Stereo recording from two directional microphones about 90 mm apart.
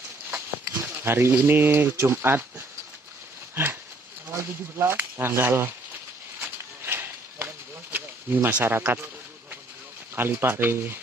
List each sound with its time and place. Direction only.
0.3 s speech: 25° right (ahead or behind)
4.3 s speech: 30° right (ahead or behind)
6.4 s a sound: 25° right (ahead or behind)
10.1 s speech: 25° right (ahead or behind)